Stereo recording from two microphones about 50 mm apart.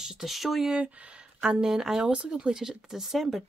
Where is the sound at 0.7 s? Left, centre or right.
Right; by 3.4 s centre.